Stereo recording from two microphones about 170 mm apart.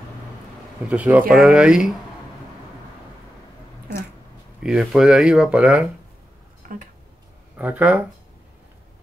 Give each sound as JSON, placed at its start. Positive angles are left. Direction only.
{"t": 0.8, "sound": "speech", "side_deg": -10}
{"t": 4.6, "sound": "speech", "side_deg": -5}
{"t": 6.6, "sound": "a sound", "side_deg": -55}
{"t": 7.5, "sound": "speech", "side_deg": -10}